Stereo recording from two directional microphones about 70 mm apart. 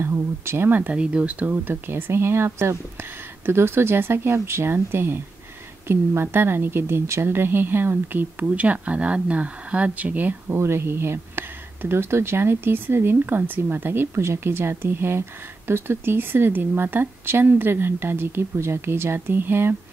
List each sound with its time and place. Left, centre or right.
0.0 s speech: right
10.5 s speech: right